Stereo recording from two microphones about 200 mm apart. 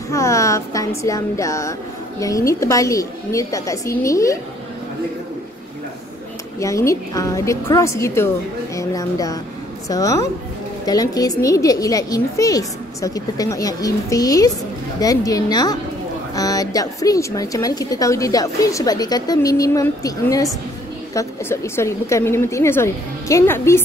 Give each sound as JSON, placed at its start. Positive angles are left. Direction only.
{"t": 0.1, "sound": "speech", "side_deg": 15}
{"t": 6.6, "sound": "speech", "side_deg": 15}